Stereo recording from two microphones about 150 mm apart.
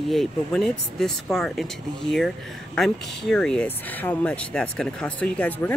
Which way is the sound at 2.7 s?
Centre (ahead or behind).